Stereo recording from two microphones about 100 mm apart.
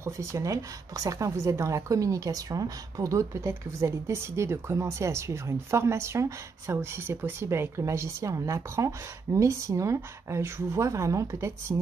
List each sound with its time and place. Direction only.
0.0 s speech: 30° right (ahead or behind)